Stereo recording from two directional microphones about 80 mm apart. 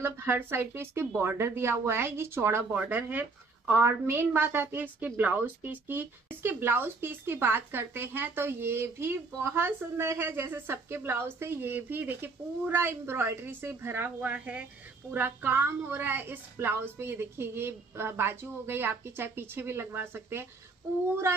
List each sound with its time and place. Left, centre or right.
0.0 s speech: right
2.7 s a woman's voice: centre
14.3 s a woman's voice: centre